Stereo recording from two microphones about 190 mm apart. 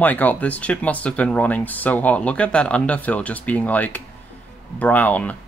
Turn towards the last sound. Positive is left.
turn(degrees=10)  # may be behind; listen again after turning